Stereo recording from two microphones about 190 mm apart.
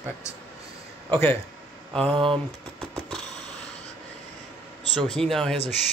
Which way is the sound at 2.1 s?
30° right (ahead or behind).